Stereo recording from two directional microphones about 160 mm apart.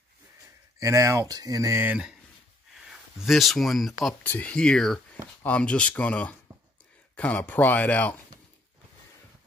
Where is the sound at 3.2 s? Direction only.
Centre (ahead or behind).